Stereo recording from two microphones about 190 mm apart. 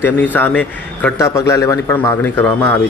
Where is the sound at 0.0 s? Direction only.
10° left (ahead or behind).